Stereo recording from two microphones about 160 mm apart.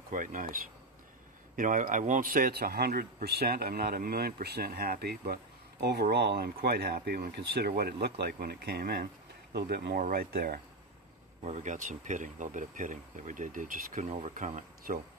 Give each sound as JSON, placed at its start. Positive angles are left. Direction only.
{"t": 0.1, "sound": "speech", "side_deg": -55}
{"t": 1.6, "sound": "speech", "side_deg": -55}
{"t": 11.4, "sound": "speech", "side_deg": -50}